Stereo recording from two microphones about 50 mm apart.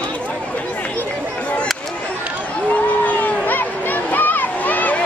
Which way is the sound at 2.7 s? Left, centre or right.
Left.